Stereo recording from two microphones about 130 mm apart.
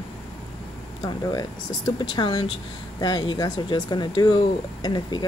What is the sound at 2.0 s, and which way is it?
Speech, 35° left (ahead or behind).